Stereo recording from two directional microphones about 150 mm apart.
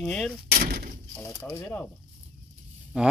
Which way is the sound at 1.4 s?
15° left (ahead or behind).